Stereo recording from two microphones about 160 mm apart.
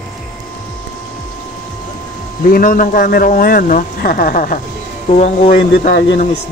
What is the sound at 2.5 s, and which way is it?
Speech, 60° left (ahead or behind).